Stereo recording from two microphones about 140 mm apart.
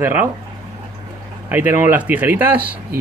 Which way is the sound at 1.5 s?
15° right (ahead or behind).